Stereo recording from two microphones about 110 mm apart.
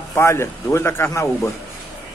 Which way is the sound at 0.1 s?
25° left (ahead or behind).